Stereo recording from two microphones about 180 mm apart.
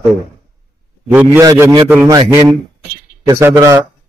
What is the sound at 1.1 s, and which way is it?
Speech, 10° right (ahead or behind).